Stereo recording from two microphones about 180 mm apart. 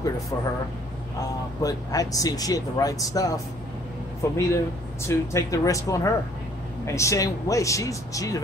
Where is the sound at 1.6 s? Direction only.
20° left (ahead or behind).